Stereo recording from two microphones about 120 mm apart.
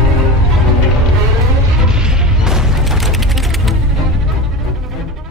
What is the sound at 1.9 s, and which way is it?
Mechanisms, 5° right (ahead or behind).